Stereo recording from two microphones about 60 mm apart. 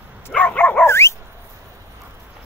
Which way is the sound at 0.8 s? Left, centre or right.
Left.